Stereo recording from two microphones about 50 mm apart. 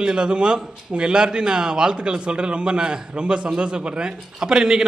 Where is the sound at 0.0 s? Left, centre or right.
Centre.